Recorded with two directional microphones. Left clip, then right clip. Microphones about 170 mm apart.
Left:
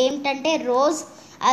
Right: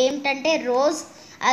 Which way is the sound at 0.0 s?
5° left (ahead or behind).